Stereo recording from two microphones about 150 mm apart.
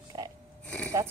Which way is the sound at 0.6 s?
10° left (ahead or behind).